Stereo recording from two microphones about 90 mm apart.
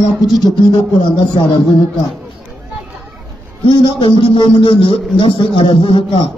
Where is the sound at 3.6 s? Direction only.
85° left.